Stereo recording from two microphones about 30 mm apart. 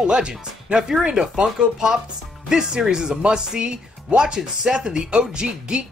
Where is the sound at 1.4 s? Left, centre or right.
Centre.